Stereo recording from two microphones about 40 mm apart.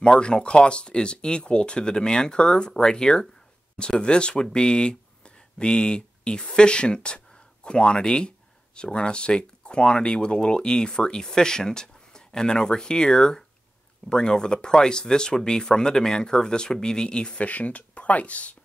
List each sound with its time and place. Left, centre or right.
0.0 s speech: left
17.5 s speech: left